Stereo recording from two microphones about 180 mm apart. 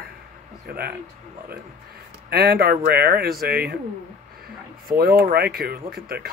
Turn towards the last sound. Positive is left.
turn(degrees=-55)  # may be behind; listen again after turning